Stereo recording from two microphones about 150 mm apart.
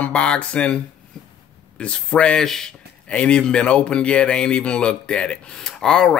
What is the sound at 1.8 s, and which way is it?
Speech, 10° left (ahead or behind).